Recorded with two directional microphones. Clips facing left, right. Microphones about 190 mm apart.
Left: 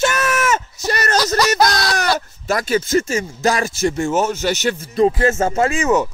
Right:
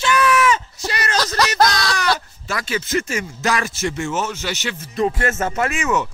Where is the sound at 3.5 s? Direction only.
30° left (ahead or behind).